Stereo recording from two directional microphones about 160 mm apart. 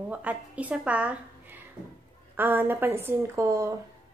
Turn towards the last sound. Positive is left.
turn(degrees=-20)  # may be behind; listen again after turning